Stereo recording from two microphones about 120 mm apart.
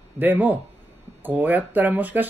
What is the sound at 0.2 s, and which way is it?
Speech, 15° right (ahead or behind).